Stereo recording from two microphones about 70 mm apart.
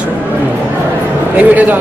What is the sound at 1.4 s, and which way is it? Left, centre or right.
Speech, right.